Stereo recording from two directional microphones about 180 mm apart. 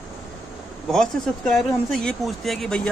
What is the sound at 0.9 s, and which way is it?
Speech, centre (ahead or behind).